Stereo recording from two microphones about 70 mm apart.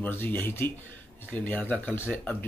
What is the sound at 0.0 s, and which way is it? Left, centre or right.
Speech, left.